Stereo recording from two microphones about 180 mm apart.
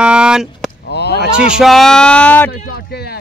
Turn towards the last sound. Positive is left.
turn(degrees=60)  # may be behind; listen again after turning